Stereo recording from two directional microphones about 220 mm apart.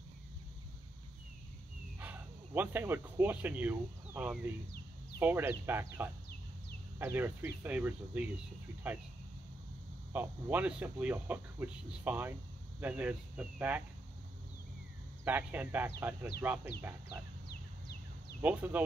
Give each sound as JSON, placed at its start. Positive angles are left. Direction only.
{"t": 2.0, "sound": "speech", "side_deg": -10}
{"t": 10.1, "sound": "speech", "side_deg": -10}
{"t": 15.2, "sound": "speech", "side_deg": -10}
{"t": 17.5, "sound": "a sound", "side_deg": 45}
{"t": 18.4, "sound": "speech", "side_deg": -5}